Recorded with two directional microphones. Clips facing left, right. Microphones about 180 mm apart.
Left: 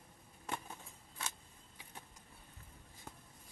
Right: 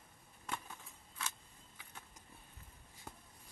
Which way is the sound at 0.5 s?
30° left (ahead or behind).